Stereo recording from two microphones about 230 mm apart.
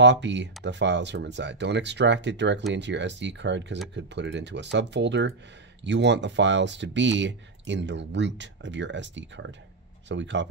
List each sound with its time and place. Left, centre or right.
0.0 s speech: right